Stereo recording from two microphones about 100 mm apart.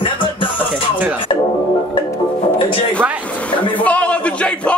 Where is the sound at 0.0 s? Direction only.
60° left (ahead or behind).